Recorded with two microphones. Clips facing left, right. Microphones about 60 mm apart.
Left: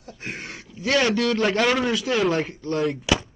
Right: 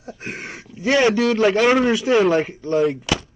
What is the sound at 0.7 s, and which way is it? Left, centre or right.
A man's voice, right.